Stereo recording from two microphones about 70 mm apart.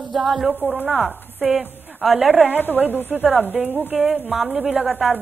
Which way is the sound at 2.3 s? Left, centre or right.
Centre.